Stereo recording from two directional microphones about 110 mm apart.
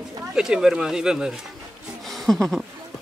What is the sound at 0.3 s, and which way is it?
Speech, 5° right (ahead or behind).